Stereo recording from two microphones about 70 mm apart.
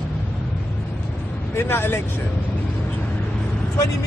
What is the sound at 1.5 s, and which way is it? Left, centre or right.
Speech, left.